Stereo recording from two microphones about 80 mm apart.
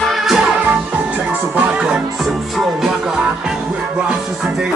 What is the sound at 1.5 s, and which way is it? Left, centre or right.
Music, centre.